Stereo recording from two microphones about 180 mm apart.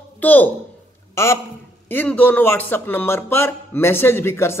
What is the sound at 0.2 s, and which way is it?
A woman's voice, 10° left (ahead or behind).